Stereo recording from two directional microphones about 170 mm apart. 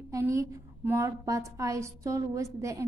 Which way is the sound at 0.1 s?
20° right (ahead or behind).